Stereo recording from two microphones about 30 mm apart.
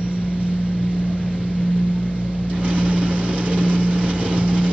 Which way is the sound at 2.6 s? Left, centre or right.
Right.